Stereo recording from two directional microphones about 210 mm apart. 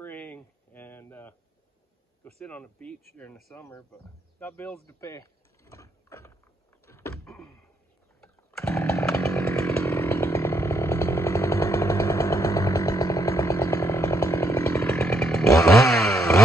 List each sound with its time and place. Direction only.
0.0 s a sound: 5° left (ahead or behind)
2.4 s speech: 5° left (ahead or behind)
6.9 s power windows: 15° left (ahead or behind)
7.2 s a sound: 5° left (ahead or behind)
8.5 s chainsaw: 10° left (ahead or behind)
15.9 s motorcycle: centre (ahead or behind)